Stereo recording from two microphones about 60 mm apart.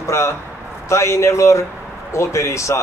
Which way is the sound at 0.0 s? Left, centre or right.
Left.